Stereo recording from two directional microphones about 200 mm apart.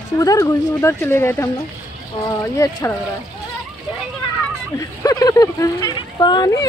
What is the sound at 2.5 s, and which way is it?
Speech, 15° left (ahead or behind).